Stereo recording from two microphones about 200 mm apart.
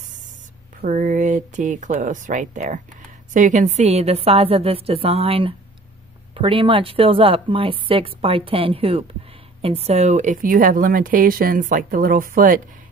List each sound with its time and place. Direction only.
0.7 s a woman's voice: 40° right (ahead or behind)